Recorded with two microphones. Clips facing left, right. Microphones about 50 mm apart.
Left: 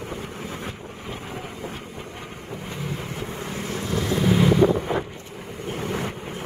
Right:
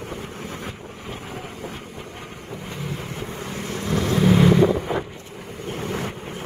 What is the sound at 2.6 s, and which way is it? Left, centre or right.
Vehicle, centre.